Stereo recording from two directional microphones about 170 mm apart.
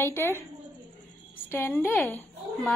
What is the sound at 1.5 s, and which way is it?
A woman's voice, 15° left (ahead or behind).